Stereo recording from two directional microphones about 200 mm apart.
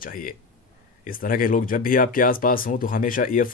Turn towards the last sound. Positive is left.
turn(degrees=45)  # may be behind; listen again after turning